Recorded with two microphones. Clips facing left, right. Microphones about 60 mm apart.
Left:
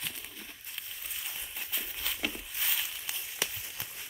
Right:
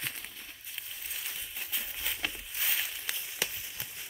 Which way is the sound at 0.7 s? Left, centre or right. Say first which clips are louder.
Right 1 dB; centre.